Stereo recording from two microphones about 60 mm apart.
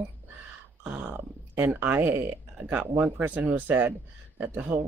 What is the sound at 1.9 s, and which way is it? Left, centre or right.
Speech, right.